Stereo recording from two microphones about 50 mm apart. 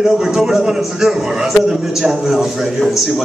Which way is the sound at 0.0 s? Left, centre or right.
Centre.